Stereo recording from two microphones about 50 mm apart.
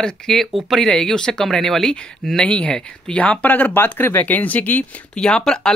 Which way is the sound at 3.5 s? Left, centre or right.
Left.